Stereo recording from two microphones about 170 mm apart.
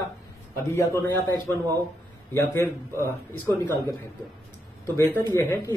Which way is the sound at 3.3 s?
15° left (ahead or behind).